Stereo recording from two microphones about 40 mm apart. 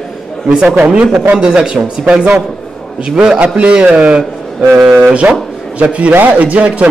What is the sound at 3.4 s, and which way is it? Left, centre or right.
Speech, right.